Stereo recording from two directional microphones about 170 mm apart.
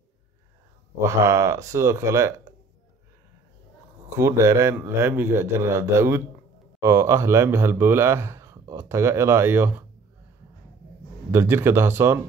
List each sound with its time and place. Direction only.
1.0 s speech: 20° right (ahead or behind)
4.2 s speech: 15° right (ahead or behind)
11.3 s speech: 15° right (ahead or behind)